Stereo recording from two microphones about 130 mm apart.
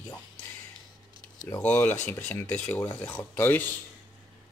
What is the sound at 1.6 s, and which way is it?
Speech, 15° left (ahead or behind).